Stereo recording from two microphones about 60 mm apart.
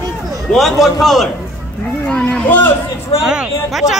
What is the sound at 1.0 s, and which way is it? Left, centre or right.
Speech, centre.